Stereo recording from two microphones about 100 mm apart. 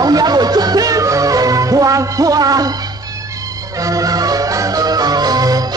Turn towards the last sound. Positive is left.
turn(degrees=-40)  # may be behind; listen again after turning